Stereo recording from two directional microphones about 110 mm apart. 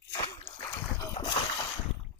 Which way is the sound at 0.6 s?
35° left (ahead or behind).